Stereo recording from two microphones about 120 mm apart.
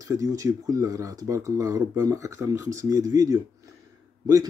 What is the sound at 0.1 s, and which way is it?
Speech, 25° right (ahead or behind).